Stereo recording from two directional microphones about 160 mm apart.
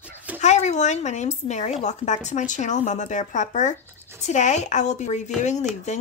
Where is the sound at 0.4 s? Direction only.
45° left (ahead or behind).